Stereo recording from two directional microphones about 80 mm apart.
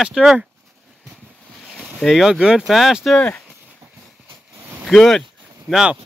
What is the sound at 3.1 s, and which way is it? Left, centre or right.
Speech, centre.